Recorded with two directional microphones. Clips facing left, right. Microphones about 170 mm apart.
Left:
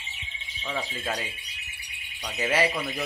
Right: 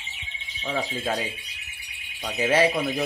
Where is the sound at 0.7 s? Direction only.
15° right (ahead or behind).